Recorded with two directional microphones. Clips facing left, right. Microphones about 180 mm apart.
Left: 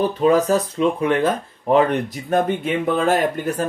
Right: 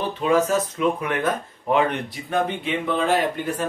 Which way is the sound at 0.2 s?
35° left (ahead or behind).